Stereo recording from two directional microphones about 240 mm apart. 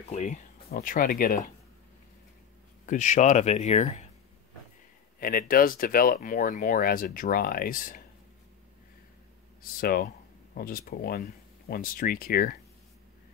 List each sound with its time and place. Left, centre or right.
0.1 s speech: left
2.9 s speech: left
5.2 s speech: left
9.6 s speech: left